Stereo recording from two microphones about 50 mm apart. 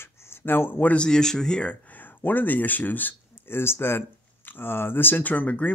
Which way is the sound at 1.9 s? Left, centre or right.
Left.